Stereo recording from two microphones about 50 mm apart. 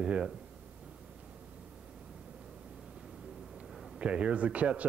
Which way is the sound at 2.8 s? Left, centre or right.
Centre.